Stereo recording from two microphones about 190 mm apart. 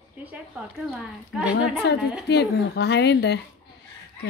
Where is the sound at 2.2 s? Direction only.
60° left (ahead or behind).